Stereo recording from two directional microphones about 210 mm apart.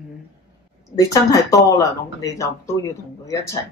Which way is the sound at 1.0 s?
15° left (ahead or behind).